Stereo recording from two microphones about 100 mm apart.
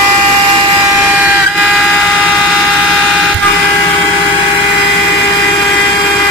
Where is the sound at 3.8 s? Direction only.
15° left (ahead or behind).